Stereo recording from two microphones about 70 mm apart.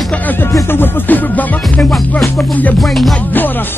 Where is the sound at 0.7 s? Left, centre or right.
Left.